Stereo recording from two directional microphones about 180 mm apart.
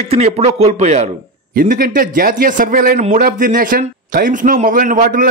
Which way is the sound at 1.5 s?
50° right (ahead or behind).